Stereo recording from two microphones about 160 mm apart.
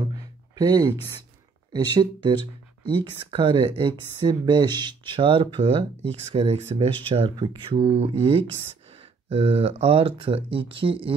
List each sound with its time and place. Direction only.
0.6 s speech: 25° right (ahead or behind)